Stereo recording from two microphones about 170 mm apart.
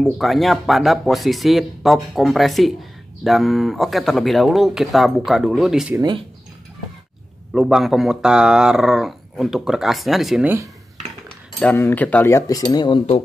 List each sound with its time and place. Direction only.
0.0 s speech: centre (ahead or behind)
5.9 s speech: 25° right (ahead or behind)
7.5 s speech: centre (ahead or behind)
11.2 s speech: 10° left (ahead or behind); by 13.2 s 30° left (ahead or behind)